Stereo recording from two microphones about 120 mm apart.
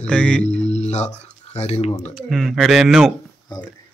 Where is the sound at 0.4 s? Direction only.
70° left (ahead or behind).